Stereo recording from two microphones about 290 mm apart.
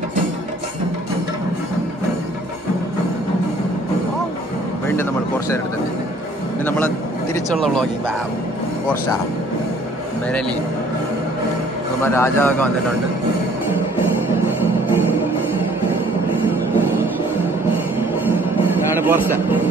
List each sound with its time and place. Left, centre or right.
7.3 s speech: centre
12.0 s a man's voice: centre
19.0 s a man's voice: centre